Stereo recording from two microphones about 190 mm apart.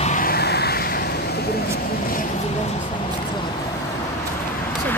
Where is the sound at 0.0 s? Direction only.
45° left (ahead or behind).